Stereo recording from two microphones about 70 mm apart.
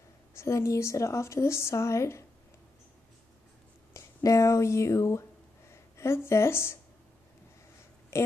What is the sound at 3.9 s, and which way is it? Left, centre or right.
A woman's voice, left.